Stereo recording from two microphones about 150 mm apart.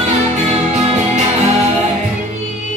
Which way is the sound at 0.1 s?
50° right (ahead or behind).